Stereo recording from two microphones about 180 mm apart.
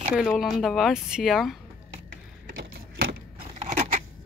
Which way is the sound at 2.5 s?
65° right (ahead or behind).